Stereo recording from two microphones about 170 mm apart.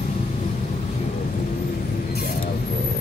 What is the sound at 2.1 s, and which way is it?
Mechanisms, 60° left (ahead or behind).